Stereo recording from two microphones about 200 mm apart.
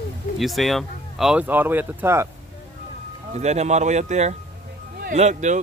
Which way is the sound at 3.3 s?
35° right (ahead or behind).